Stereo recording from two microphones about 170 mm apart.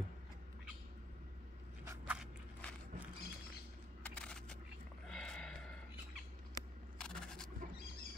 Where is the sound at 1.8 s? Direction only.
15° right (ahead or behind).